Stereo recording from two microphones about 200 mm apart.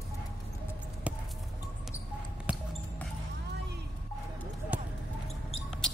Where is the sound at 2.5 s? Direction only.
5° right (ahead or behind).